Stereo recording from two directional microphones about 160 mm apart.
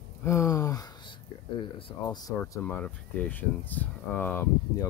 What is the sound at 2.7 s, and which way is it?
Speech, 10° left (ahead or behind).